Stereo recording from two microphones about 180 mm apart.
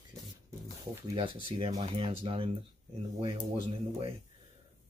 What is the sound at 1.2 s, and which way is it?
Speech, 30° right (ahead or behind).